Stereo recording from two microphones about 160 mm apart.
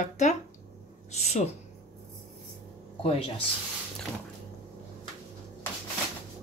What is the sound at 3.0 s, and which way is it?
Speech, 35° left (ahead or behind).